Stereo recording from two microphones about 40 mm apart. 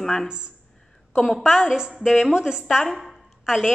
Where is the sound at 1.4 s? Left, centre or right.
Centre.